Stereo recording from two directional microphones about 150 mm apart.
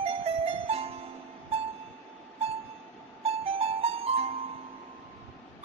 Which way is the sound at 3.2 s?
40° right (ahead or behind).